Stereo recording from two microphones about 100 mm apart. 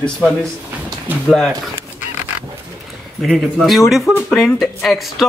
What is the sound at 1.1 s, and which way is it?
Speech, 20° right (ahead or behind).